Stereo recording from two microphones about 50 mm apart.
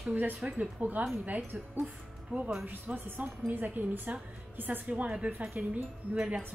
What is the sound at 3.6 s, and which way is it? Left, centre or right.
A woman's voice, right.